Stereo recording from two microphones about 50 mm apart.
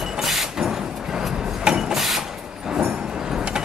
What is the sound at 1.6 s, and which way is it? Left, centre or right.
Printer, centre.